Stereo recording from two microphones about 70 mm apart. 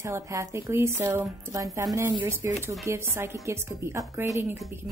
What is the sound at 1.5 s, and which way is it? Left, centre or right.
Speech, right.